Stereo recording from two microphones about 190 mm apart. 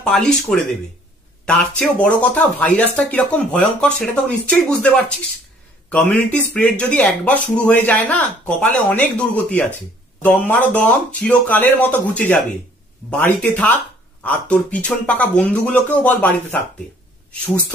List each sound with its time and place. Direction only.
0.0 s speech: 5° left (ahead or behind)